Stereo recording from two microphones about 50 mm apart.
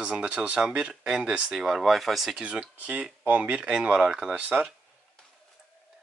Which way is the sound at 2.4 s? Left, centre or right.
Right.